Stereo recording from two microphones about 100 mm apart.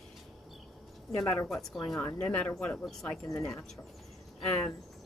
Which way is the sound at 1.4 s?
5° left (ahead or behind).